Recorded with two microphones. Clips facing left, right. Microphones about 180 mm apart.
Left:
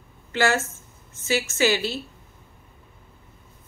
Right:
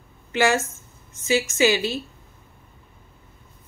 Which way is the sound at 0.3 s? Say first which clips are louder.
Right 2 dB; 15° right (ahead or behind).